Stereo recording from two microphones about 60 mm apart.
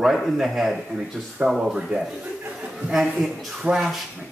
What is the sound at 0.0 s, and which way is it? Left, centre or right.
A man's voice, centre.